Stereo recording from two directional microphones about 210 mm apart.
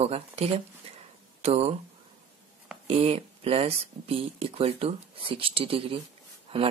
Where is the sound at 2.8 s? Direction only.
25° right (ahead or behind).